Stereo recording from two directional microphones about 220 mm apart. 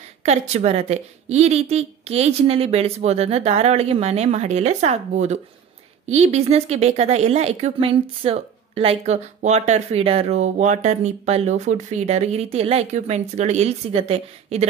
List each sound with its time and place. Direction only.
0.2 s speech: 30° right (ahead or behind)